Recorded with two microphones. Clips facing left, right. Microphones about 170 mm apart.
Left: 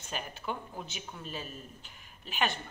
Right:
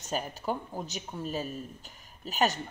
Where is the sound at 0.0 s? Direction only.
40° right (ahead or behind).